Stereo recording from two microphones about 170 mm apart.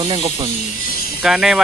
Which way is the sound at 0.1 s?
25° right (ahead or behind).